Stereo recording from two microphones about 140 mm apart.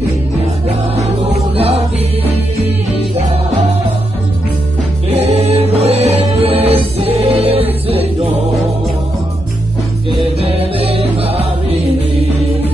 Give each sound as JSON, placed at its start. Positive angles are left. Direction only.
{"t": 0.7, "sound": "music", "side_deg": -50}
{"t": 5.1, "sound": "music", "side_deg": -50}
{"t": 10.4, "sound": "music", "side_deg": -45}